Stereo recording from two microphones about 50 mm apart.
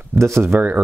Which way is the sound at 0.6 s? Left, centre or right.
Right.